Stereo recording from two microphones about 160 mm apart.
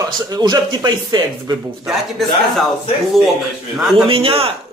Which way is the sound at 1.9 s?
Centre (ahead or behind).